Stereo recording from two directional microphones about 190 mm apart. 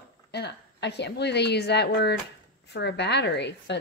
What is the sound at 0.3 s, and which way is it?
A woman's voice, 60° left (ahead or behind).